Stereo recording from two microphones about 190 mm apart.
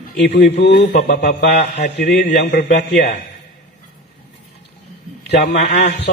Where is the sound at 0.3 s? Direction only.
65° left (ahead or behind).